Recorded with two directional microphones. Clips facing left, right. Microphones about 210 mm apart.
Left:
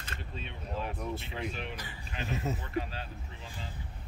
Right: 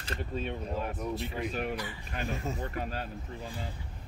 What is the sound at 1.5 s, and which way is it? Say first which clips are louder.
Speech: right 7 dB; 45° right (ahead or behind).